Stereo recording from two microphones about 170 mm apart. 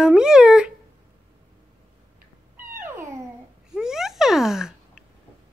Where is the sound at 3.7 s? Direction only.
5° right (ahead or behind).